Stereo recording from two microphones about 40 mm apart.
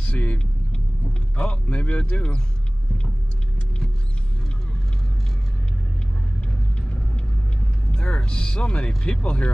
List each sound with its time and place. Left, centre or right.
0.0 s vehicle: left
1.3 s speech: left
6.4 s rumble: left
7.9 s music: left
8.3 s speech: left